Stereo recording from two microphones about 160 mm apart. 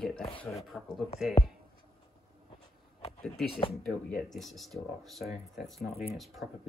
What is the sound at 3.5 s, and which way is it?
Speech, 35° left (ahead or behind).